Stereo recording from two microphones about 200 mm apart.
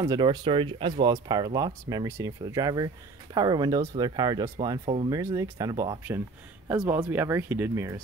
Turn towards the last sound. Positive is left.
turn(degrees=-15)  # may be behind; listen again after turning